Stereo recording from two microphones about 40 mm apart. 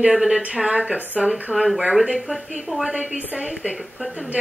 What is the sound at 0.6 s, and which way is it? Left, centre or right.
Speech, right.